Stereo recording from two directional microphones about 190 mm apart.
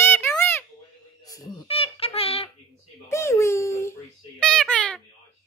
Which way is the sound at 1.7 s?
30° left (ahead or behind).